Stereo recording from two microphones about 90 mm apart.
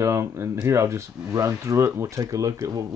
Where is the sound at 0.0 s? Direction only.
35° right (ahead or behind).